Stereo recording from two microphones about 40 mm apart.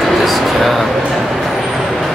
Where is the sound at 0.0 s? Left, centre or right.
Centre.